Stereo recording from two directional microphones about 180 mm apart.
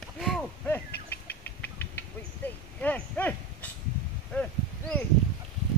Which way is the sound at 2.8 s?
10° left (ahead or behind).